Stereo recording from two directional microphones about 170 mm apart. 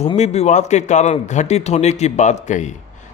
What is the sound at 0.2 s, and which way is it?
A man's voice, 40° left (ahead or behind).